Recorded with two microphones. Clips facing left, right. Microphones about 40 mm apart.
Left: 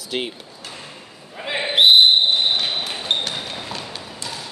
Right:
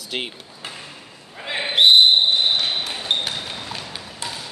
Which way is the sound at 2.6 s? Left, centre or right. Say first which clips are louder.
Even; centre.